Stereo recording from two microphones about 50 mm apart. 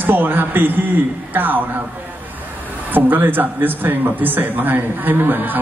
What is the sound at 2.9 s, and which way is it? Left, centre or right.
A man's voice, right.